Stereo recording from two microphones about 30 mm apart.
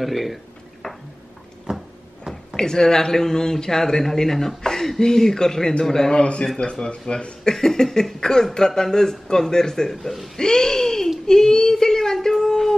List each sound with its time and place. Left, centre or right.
0.0 s speech: centre
0.8 s a sound: centre
1.7 s a sound: centre
2.5 s a man's voice: left
5.9 s cough: centre
6.1 s speech: left
7.4 s cough: centre
10.3 s speech: centre
11.2 s a sound: centre